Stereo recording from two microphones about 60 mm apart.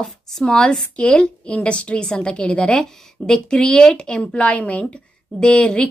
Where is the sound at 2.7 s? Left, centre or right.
Centre.